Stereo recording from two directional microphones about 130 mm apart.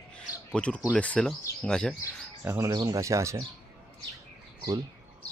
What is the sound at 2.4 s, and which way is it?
Speech, 20° right (ahead or behind).